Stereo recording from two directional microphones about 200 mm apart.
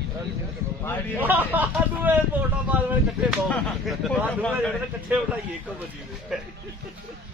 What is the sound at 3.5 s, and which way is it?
Speech, 5° left (ahead or behind).